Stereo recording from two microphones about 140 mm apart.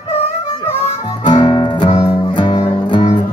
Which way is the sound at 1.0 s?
35° left (ahead or behind).